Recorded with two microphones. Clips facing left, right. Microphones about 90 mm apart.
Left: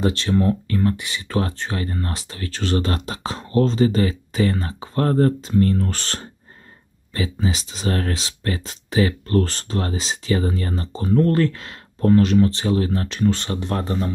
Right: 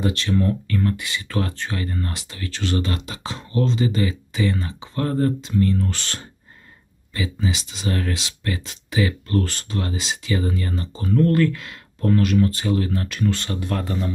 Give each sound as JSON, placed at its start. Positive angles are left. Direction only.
{"t": 0.0, "sound": "speech", "side_deg": 30}